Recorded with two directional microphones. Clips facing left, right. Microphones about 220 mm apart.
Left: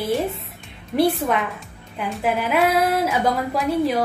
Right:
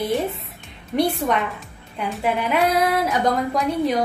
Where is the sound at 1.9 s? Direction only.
Centre (ahead or behind).